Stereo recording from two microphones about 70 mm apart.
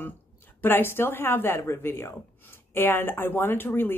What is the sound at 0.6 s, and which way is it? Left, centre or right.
Speech, left.